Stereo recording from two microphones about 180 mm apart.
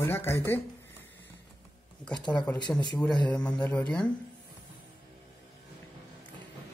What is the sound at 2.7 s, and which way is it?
Speech, 5° left (ahead or behind).